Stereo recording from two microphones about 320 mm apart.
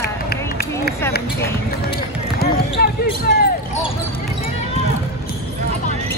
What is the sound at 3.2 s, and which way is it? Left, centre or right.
Basketball bounce, left.